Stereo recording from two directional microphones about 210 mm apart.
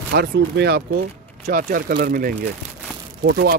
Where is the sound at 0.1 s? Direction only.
50° right (ahead or behind).